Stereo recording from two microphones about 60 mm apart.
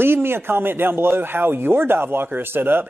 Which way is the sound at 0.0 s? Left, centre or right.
Right.